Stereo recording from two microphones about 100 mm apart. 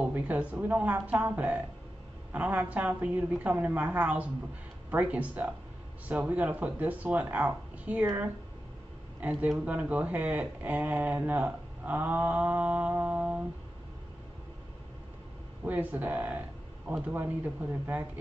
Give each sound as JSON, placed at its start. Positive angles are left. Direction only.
{"t": 0.0, "sound": "a woman's voice", "side_deg": -15}
{"t": 9.2, "sound": "speech", "side_deg": -10}
{"t": 15.6, "sound": "speech", "side_deg": -15}